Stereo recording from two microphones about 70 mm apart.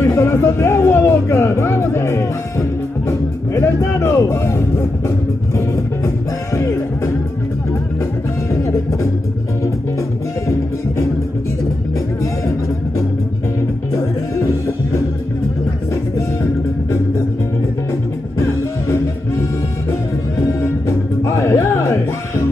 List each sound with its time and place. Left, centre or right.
0.0 s a sound: left
3.1 s music: left
6.0 s music: left
8.5 s music: left
21.2 s music: left